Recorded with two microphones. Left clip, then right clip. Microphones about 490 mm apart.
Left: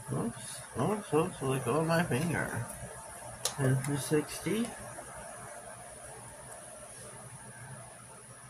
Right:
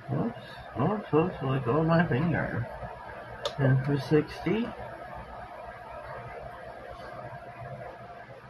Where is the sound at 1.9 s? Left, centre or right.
Left.